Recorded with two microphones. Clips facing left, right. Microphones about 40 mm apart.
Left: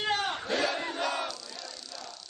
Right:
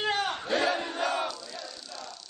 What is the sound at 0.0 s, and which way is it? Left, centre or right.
Battle cry, centre.